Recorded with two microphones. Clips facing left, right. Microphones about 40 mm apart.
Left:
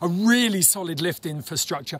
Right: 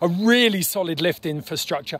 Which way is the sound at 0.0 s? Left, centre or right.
Right.